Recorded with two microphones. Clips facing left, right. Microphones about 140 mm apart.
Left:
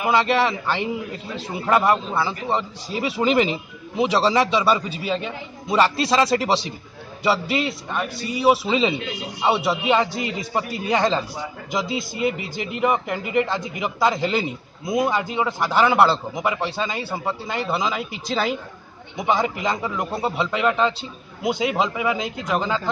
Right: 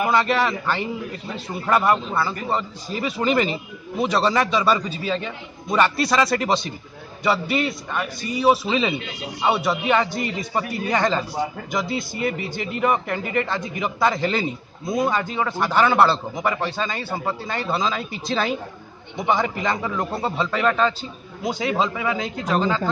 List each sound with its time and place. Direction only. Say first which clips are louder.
0.1 s speech: left 1 dB; 15° left (ahead or behind)